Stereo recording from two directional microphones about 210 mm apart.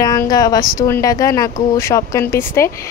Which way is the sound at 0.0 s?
20° left (ahead or behind).